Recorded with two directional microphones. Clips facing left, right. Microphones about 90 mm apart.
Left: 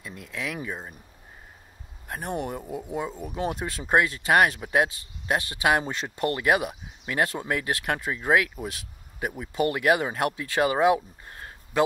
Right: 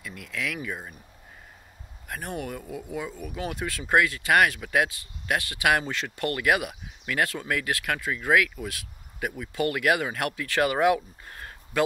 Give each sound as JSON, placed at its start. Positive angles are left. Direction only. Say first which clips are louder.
{"t": 0.0, "sound": "speech", "louder": "right 1 dB", "side_deg": 30}
{"t": 2.0, "sound": "speech", "louder": "left 3 dB", "side_deg": 30}